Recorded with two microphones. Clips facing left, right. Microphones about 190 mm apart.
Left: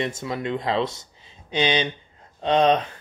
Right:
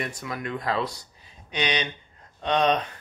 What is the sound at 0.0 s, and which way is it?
Speech, 25° left (ahead or behind).